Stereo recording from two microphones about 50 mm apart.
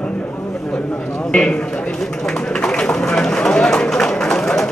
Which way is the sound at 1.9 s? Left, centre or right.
Centre.